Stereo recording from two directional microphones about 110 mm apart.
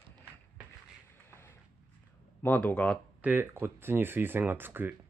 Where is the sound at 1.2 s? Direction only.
25° left (ahead or behind).